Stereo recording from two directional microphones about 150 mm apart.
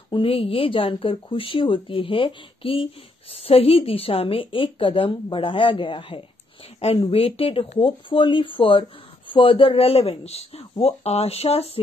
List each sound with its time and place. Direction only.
0.1 s speech: 40° left (ahead or behind)